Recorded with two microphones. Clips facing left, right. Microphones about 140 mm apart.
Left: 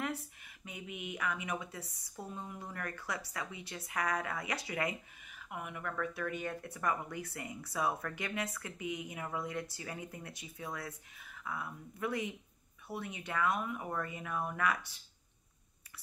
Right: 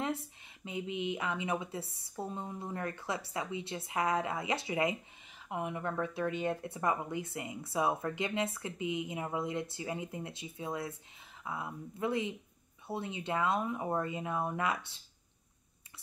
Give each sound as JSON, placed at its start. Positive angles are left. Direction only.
{"t": 0.7, "sound": "speech", "side_deg": -25}